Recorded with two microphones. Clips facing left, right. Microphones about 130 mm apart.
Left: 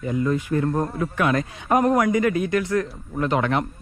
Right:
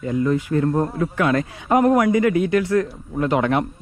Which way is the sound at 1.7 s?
25° right (ahead or behind).